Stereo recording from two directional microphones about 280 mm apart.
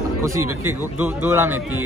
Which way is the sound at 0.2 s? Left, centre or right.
Centre.